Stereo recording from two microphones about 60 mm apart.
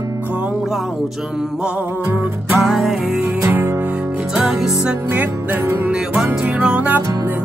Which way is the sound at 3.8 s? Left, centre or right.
Right.